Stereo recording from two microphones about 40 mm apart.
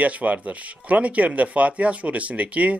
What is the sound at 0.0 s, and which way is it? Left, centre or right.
Speech, right.